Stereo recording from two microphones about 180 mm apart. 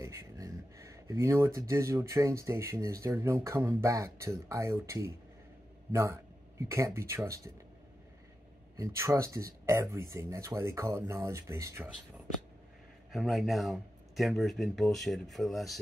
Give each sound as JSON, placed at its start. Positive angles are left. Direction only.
{"t": 0.0, "sound": "speech", "side_deg": -15}
{"t": 8.7, "sound": "speech", "side_deg": -15}
{"t": 13.1, "sound": "speech", "side_deg": 0}